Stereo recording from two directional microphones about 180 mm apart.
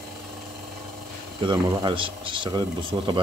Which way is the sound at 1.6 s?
20° right (ahead or behind).